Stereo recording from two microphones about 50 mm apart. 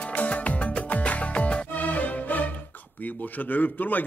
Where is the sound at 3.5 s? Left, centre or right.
Left.